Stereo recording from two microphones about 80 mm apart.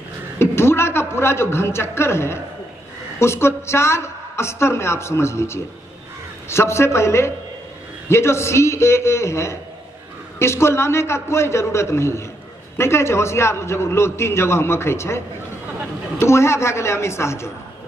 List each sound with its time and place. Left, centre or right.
0.4 s a man's voice: left